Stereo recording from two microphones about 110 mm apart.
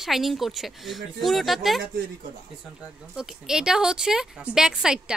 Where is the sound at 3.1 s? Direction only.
5° right (ahead or behind).